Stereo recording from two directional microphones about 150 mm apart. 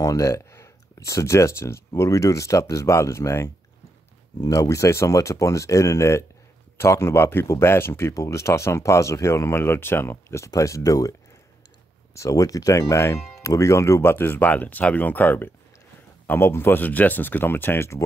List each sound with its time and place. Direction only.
0.0 s speech: 20° left (ahead or behind)